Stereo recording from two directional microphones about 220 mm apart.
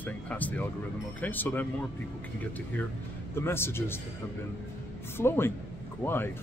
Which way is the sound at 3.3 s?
10° left (ahead or behind).